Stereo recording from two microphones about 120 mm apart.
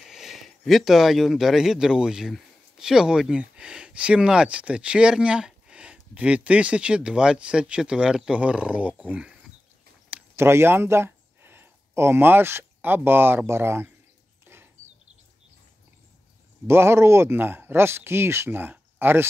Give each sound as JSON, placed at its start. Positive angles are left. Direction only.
{"t": 0.0, "sound": "speech", "side_deg": -5}
{"t": 14.4, "sound": "a sound", "side_deg": -20}
{"t": 16.6, "sound": "speech", "side_deg": -20}